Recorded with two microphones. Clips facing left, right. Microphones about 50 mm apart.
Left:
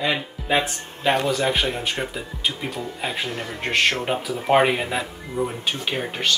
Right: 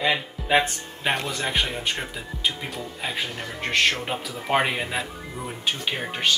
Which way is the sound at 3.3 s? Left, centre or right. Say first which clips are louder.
Left 1 dB; centre.